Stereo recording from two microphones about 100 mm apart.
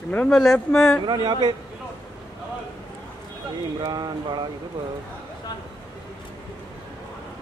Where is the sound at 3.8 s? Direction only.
45° right (ahead or behind).